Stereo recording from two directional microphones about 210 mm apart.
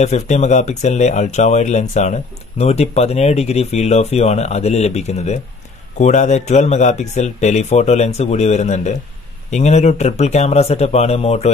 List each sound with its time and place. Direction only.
0.0 s speech: 35° left (ahead or behind)